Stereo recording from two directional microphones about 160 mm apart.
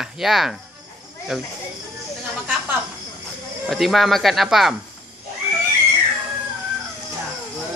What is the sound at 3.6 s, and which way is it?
Speech, centre (ahead or behind).